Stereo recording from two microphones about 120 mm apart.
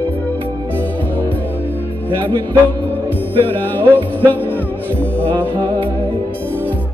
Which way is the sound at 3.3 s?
45° right (ahead or behind).